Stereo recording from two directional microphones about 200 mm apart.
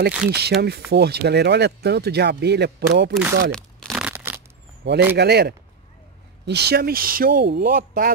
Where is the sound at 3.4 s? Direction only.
5° left (ahead or behind).